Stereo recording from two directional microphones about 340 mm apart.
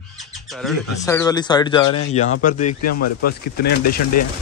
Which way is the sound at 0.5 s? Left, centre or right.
Centre.